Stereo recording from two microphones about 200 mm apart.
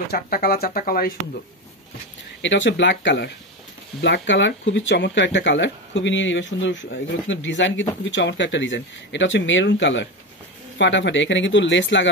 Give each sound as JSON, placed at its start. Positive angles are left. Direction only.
{"t": 0.1, "sound": "speech", "side_deg": 50}
{"t": 2.4, "sound": "speech", "side_deg": 65}